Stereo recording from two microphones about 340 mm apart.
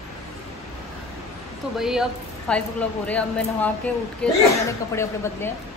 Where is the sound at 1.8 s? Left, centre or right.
Centre.